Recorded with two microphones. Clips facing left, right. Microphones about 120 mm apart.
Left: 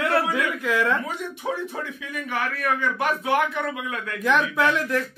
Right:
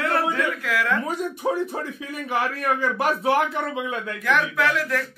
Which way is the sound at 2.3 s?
30° right (ahead or behind).